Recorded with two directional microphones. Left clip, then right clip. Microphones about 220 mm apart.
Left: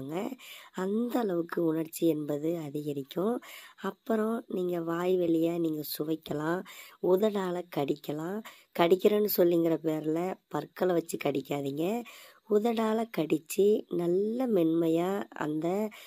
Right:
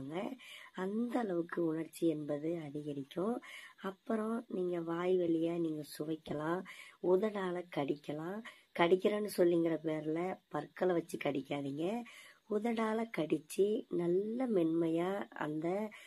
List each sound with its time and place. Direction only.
0.7 s speech: 40° left (ahead or behind)